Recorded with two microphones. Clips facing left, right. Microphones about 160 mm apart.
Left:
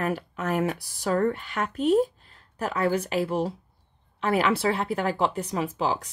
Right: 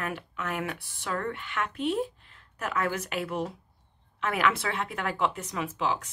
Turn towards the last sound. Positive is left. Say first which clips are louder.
# left 3 dB
turn(degrees=35)  # may be behind; listen again after turning